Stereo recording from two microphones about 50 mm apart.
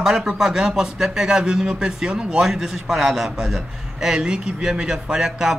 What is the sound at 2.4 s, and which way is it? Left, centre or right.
A man's voice, centre.